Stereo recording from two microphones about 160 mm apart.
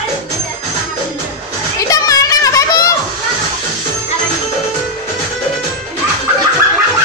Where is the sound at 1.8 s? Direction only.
20° left (ahead or behind).